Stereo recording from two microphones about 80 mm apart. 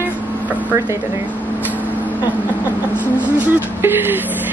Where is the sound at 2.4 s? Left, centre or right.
Left.